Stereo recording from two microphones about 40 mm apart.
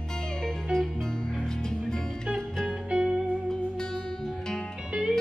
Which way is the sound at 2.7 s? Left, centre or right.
Right.